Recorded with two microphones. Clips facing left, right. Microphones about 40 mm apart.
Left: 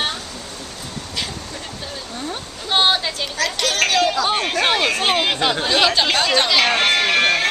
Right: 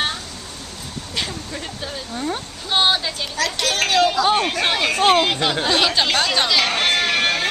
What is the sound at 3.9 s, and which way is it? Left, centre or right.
Speech, centre.